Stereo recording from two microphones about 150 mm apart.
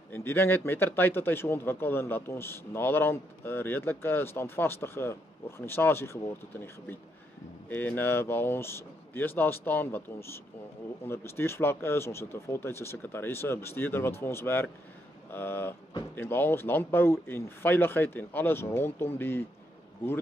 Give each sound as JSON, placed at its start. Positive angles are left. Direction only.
{"t": 0.1, "sound": "speech", "side_deg": 15}